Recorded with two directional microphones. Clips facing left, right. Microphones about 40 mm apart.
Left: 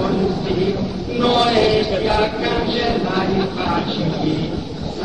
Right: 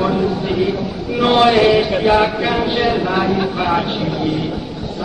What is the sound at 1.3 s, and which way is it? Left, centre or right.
Mantra, right.